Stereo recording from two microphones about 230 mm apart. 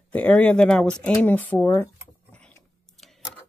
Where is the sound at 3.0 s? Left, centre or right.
Centre.